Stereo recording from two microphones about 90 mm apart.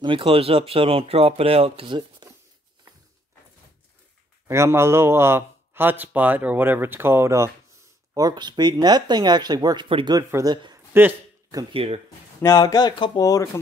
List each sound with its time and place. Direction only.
0.0 s speech: 80° right; by 2.2 s 60° right (ahead or behind)
4.5 s a man's voice: 30° right (ahead or behind)
8.1 s speech: 45° right (ahead or behind)
10.9 s speech: 25° right (ahead or behind)
11.8 s speech: 90° right
12.4 s speech: 25° left (ahead or behind)
12.7 s speech: 55° left (ahead or behind)
13.2 s speech: 40° left (ahead or behind)